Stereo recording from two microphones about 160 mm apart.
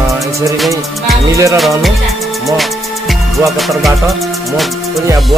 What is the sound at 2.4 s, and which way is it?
Music, centre (ahead or behind).